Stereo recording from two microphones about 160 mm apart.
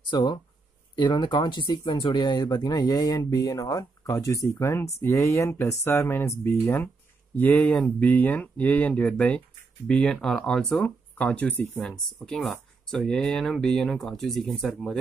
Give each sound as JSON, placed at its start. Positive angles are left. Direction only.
{"t": 0.1, "sound": "speech", "side_deg": 30}